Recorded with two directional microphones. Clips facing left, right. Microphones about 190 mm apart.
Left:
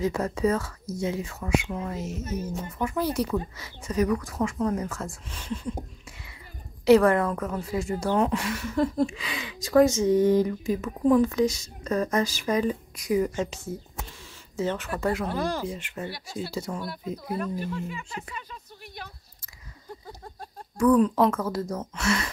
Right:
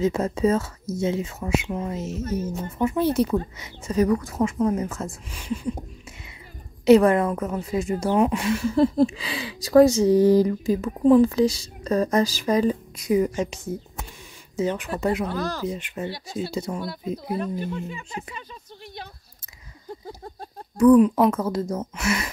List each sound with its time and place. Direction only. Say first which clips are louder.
0.0 s speech: right 4 dB; 25° right (ahead or behind)
6.8 s a woman's voice: right 3 dB; 20° right (ahead or behind)
20.7 s speech: right 5 dB; 20° right (ahead or behind)